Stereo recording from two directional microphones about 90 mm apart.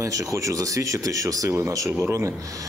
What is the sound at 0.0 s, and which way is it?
Speech, 35° right (ahead or behind).